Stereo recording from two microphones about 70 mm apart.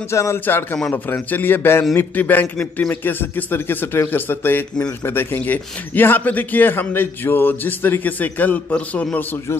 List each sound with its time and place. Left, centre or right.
0.1 s a man's voice: left